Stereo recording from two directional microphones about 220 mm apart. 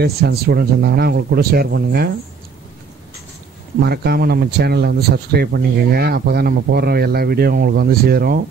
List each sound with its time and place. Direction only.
0.0 s speech: 45° right (ahead or behind)
3.8 s speech: 45° right (ahead or behind)